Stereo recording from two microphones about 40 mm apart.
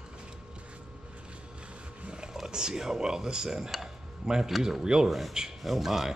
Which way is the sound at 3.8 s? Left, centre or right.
Centre.